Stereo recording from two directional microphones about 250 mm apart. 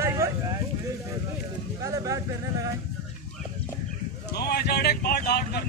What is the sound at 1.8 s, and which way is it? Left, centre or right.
Speech, centre.